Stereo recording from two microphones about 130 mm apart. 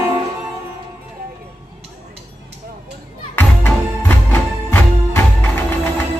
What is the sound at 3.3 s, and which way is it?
Music, 15° left (ahead or behind).